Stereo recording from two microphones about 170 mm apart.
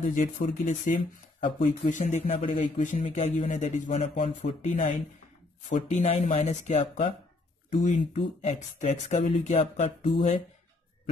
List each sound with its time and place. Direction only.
0.1 s speech: 45° left (ahead or behind)